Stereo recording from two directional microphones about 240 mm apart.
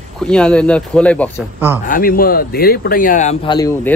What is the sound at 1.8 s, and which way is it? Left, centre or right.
Speech, left.